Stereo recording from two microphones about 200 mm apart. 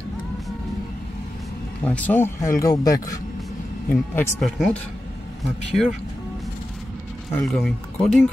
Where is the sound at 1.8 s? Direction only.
10° left (ahead or behind).